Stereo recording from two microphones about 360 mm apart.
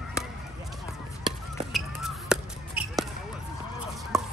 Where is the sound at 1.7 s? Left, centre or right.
Centre.